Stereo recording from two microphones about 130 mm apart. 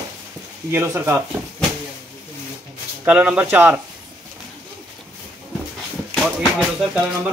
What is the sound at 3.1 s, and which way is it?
Speech, 10° right (ahead or behind).